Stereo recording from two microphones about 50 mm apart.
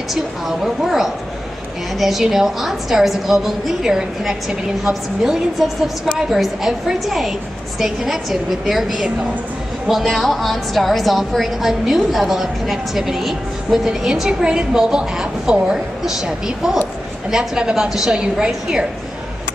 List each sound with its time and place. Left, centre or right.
0.1 s a woman's voice: centre